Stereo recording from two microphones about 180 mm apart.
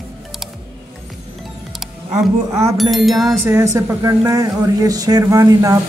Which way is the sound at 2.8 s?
Centre (ahead or behind).